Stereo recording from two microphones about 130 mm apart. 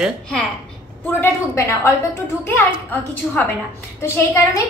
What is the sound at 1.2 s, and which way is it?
Speech, 20° left (ahead or behind).